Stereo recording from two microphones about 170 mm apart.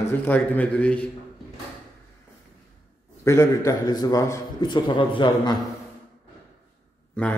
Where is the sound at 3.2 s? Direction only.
15° left (ahead or behind).